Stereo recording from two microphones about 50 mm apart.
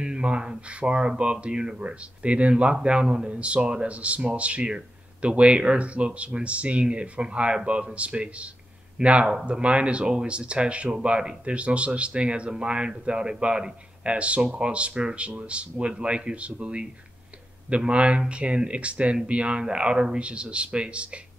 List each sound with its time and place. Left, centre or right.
0.0 s speech: right